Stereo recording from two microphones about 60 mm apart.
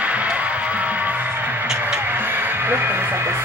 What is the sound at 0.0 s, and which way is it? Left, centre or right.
Music, right.